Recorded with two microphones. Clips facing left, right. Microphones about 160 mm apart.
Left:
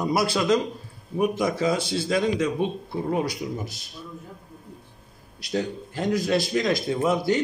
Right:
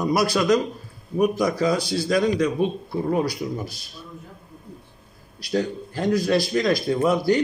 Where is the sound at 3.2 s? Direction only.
25° left (ahead or behind).